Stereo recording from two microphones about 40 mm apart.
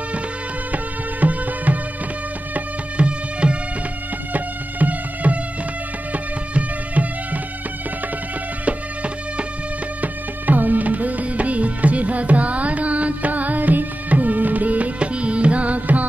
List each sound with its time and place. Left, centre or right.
1.2 s music: right
3.0 s music: right
4.3 s music: right
8.6 s music: right
10.0 s music: right
15.0 s music: right